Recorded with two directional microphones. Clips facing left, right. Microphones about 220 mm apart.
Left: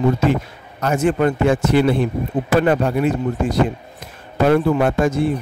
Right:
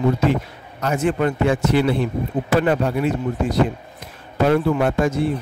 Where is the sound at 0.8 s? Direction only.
45° left (ahead or behind).